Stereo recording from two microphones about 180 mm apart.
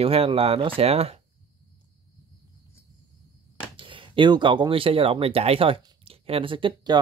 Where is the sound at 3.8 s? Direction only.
30° right (ahead or behind).